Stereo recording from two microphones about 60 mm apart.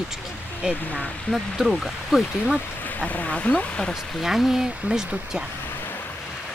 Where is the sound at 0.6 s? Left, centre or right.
Centre.